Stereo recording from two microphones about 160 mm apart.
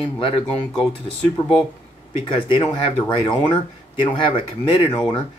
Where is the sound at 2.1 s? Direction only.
35° left (ahead or behind).